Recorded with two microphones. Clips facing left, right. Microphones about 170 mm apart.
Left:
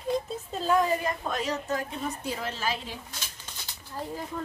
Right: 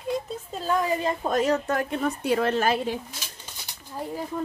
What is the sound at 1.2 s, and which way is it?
A woman's voice, 45° right (ahead or behind).